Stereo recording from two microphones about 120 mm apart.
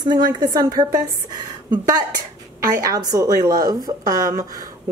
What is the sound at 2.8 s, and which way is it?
A woman's voice, 30° right (ahead or behind).